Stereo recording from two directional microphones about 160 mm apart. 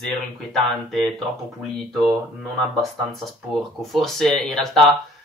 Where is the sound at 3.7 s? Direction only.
Centre (ahead or behind).